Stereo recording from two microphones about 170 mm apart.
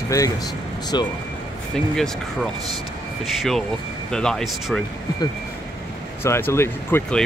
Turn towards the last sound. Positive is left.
turn(degrees=10)  # may be behind; listen again after turning